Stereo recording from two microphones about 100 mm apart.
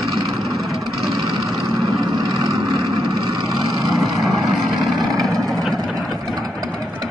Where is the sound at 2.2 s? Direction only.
40° right (ahead or behind).